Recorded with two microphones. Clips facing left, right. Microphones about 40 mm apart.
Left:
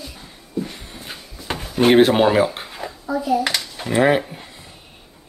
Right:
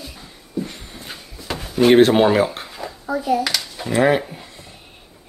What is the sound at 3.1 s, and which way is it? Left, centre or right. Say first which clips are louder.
Speech: even; right.